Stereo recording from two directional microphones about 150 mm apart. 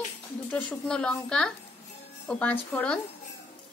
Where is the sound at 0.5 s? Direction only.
5° left (ahead or behind).